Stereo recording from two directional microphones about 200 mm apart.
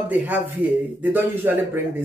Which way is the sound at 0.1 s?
10° right (ahead or behind).